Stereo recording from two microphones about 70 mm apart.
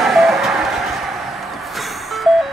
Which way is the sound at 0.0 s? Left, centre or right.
Centre.